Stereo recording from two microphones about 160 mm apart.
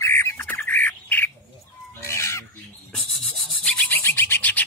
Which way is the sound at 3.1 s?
Centre (ahead or behind).